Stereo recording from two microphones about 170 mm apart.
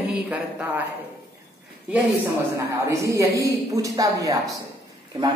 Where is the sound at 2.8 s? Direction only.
20° right (ahead or behind).